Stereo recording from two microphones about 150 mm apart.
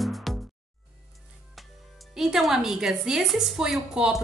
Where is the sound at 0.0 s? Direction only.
Centre (ahead or behind).